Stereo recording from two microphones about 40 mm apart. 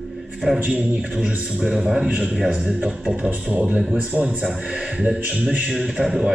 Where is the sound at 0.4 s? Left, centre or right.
Centre.